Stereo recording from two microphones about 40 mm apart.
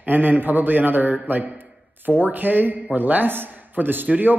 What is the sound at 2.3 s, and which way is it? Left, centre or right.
Speech, right.